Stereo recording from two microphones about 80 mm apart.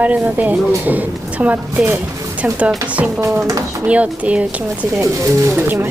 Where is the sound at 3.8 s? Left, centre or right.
Centre.